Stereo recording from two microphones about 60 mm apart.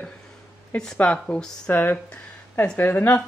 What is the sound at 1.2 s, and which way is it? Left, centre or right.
Speech, centre.